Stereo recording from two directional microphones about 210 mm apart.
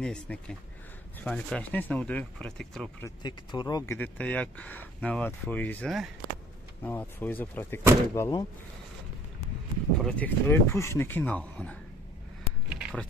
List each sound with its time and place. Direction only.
0.0 s speech: 5° left (ahead or behind)
3.2 s speech: 20° left (ahead or behind)
10.0 s speech: 5° left (ahead or behind)
12.6 s a sound: 5° right (ahead or behind)